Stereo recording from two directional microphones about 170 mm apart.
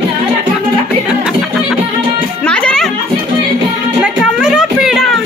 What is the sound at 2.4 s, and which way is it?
Music, 5° left (ahead or behind).